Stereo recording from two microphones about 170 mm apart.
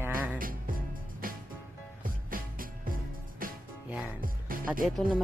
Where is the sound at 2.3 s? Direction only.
55° right (ahead or behind).